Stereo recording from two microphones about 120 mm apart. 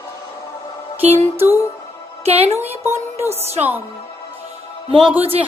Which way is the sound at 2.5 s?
65° right (ahead or behind).